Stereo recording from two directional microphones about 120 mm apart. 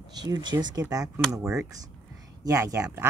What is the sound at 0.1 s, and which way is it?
Speech, 35° right (ahead or behind).